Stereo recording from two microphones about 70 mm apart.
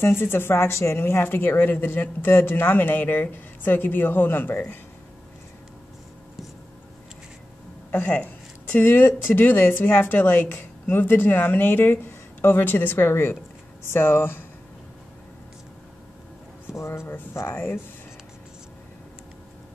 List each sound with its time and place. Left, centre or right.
0.0 s speech: left
7.9 s speech: left
16.7 s speech: left